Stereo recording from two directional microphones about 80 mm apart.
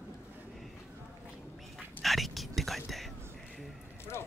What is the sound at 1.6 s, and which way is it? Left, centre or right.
Whispering, centre.